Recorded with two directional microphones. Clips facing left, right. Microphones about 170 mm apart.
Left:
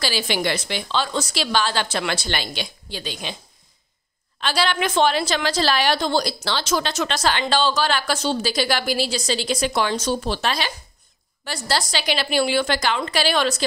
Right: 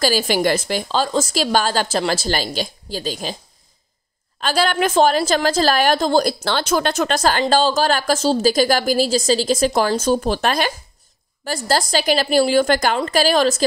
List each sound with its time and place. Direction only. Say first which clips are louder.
0.0 s a woman's voice: right 6 dB; 45° right (ahead or behind)
4.4 s a woman's voice: right 4 dB; 45° right (ahead or behind)